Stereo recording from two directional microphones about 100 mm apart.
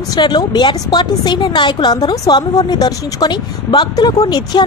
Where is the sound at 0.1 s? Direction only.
45° left (ahead or behind).